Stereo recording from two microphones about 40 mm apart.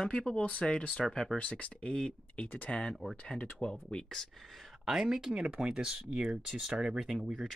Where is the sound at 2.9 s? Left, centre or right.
Centre.